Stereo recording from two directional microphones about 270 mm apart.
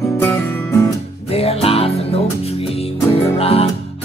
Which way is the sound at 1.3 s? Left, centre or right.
Left.